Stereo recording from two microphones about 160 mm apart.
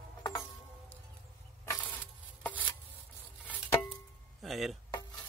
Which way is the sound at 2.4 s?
10° left (ahead or behind).